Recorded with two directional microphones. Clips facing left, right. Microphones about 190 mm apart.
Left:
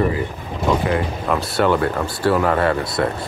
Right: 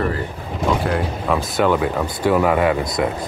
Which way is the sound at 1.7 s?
10° right (ahead or behind).